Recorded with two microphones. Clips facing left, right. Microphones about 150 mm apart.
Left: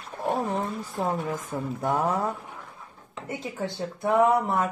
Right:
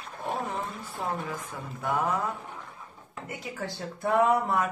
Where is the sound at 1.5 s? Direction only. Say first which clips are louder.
Left 9 dB; 30° left (ahead or behind).